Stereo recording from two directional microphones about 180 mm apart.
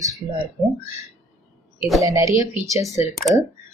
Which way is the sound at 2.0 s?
15° right (ahead or behind).